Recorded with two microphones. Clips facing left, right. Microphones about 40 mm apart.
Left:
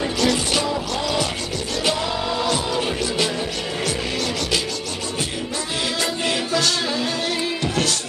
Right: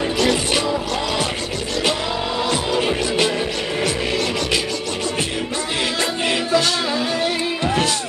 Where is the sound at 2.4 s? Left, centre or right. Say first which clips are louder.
Right 4 dB; right.